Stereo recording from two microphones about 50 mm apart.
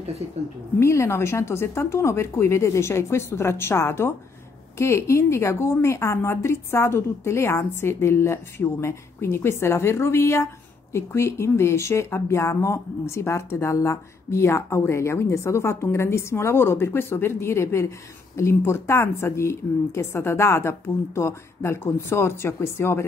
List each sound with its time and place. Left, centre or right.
0.7 s speech: left
18.6 s speech: left